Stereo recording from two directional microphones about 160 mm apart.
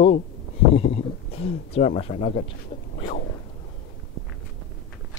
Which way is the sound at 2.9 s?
45° left (ahead or behind).